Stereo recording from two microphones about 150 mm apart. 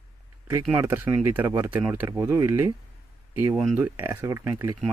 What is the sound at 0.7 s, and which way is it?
Speech, 15° right (ahead or behind).